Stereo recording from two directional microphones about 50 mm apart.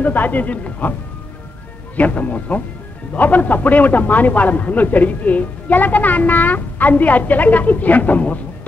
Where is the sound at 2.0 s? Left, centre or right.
Left.